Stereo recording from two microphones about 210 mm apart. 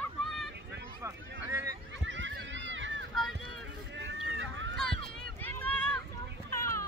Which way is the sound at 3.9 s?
60° right (ahead or behind).